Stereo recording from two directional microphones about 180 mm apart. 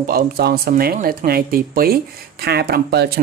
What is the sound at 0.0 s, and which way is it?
Speech, 55° right (ahead or behind).